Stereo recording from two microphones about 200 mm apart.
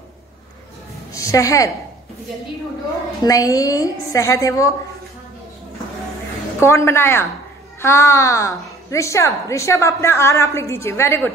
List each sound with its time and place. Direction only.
1.1 s a woman's voice: 15° left (ahead or behind)
3.3 s a woman's voice: 15° left (ahead or behind)
6.6 s a woman's voice: 15° left (ahead or behind)